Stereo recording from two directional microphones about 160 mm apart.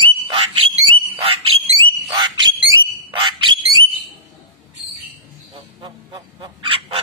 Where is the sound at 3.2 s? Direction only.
30° right (ahead or behind).